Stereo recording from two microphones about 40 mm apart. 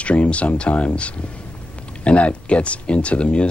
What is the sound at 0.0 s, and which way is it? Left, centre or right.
Speech, left.